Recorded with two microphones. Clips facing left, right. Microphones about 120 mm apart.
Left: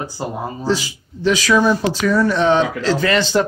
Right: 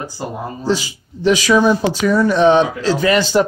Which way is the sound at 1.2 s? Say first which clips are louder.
Right 2 dB; 15° right (ahead or behind).